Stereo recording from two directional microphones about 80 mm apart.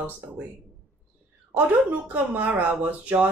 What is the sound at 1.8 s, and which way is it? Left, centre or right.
Speech, centre.